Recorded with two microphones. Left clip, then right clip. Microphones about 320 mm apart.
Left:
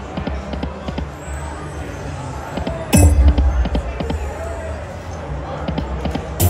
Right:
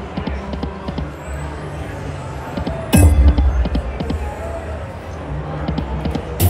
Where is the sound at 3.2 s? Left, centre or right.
Centre.